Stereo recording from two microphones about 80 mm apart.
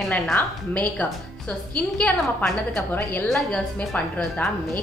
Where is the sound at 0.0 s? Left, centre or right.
Centre.